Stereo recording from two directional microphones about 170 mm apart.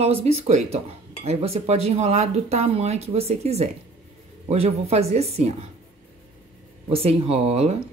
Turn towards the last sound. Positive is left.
turn(degrees=-40)  # may be behind; listen again after turning